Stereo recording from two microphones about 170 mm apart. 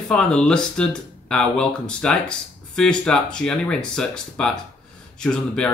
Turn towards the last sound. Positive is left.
turn(degrees=5)  # may be behind; listen again after turning